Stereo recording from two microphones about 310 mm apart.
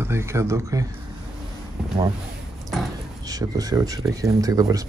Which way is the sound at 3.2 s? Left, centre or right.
Centre.